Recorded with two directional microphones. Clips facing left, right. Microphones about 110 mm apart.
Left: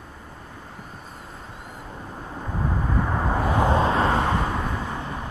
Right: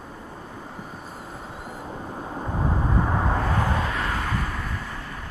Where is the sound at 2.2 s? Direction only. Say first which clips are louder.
Right 1 dB; 15° right (ahead or behind).